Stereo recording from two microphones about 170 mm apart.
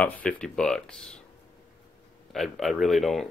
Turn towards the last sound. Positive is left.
turn(degrees=0)  # may be behind; listen again after turning